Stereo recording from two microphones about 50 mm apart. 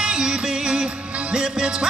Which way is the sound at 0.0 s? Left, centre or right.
Centre.